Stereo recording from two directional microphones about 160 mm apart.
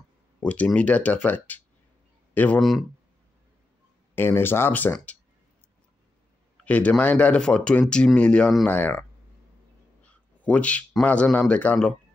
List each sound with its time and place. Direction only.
0.4 s speech: 5° left (ahead or behind)
4.1 s speech: 15° left (ahead or behind)
6.6 s speech: 10° left (ahead or behind)
10.0 s speech: 10° left (ahead or behind)